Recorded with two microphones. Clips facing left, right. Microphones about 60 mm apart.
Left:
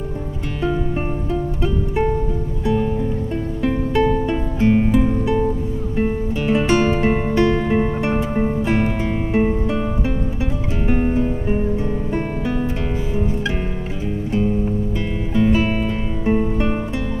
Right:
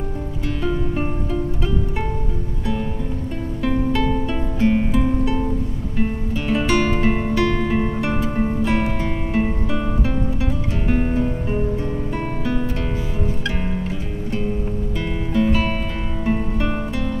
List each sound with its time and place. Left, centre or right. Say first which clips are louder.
0.6 s music: left 2 dB; centre
3.6 s music: left 2 dB; centre
5.2 s music: left 3 dB; left
8.6 s guitar: left 2 dB; centre
11.0 s music: left 2 dB; centre
15.3 s music: left 2 dB; centre